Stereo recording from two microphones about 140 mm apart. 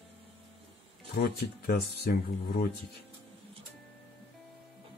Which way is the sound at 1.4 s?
90° left.